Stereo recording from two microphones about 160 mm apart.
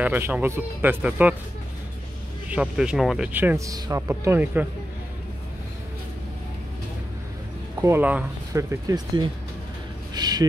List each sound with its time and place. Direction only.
0.0 s speech: 10° right (ahead or behind)
2.5 s speech: 5° right (ahead or behind)
7.8 s speech: 10° right (ahead or behind)
10.1 s a sound: 25° right (ahead or behind)